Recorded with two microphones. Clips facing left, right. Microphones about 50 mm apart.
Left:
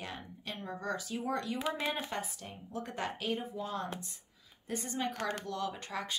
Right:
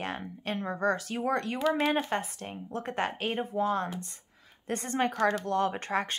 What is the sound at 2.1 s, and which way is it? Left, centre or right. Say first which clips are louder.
A woman's voice: right 7 dB; right.